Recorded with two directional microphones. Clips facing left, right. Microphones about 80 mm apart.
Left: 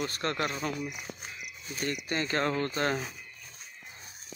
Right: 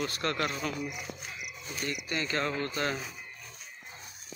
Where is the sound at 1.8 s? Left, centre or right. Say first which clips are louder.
Left 2 dB; left.